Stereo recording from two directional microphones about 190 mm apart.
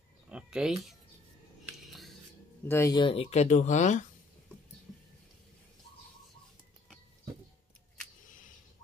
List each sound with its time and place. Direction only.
0.3 s a sound: 5° right (ahead or behind)
1.9 s scissors: centre (ahead or behind)
2.6 s speech: 15° left (ahead or behind)
3.0 s speech: 30° left (ahead or behind)